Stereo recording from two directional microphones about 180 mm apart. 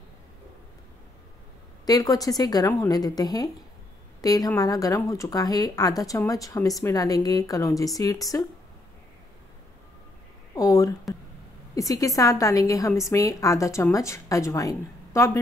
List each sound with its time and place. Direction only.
1.9 s a woman's voice: 20° left (ahead or behind)
10.5 s speech: 20° left (ahead or behind)